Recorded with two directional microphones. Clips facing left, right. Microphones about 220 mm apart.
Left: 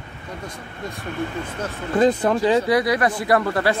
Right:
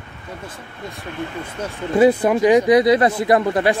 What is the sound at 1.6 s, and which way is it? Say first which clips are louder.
Speech: right 4 dB; 10° right (ahead or behind).